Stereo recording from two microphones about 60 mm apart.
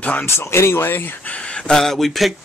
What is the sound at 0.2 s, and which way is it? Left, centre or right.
Speech, left.